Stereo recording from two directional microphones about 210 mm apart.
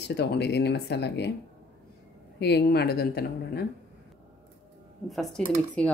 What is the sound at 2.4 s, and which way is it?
Speech, 50° left (ahead or behind).